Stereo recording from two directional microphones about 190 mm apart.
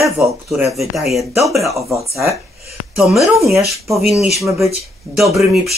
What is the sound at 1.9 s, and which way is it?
Speech, 15° right (ahead or behind).